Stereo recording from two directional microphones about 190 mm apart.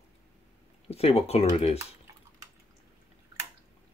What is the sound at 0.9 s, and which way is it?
Speech, 35° left (ahead or behind).